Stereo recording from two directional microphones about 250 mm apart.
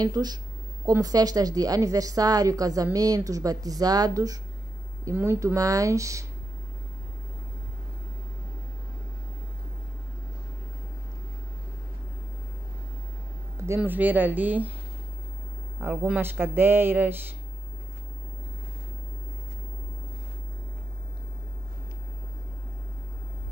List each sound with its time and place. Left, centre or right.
0.0 s a woman's voice: centre
13.7 s a woman's voice: centre
15.8 s a woman's voice: centre